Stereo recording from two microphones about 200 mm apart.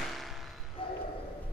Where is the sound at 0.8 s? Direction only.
25° left (ahead or behind).